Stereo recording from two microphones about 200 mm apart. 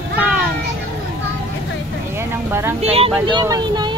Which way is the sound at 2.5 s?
10° right (ahead or behind).